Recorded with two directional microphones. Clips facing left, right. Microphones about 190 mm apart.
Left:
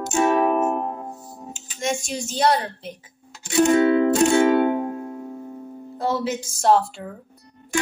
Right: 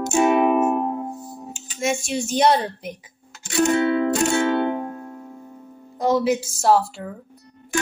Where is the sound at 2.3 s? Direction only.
20° right (ahead or behind).